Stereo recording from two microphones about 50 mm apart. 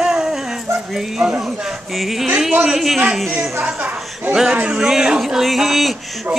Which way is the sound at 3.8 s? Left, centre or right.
Right.